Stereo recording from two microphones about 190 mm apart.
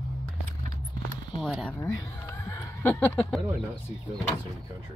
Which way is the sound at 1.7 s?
15° left (ahead or behind).